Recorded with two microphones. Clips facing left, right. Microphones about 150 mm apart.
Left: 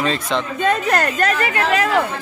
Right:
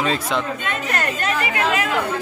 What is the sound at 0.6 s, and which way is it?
A woman's voice, 40° left (ahead or behind).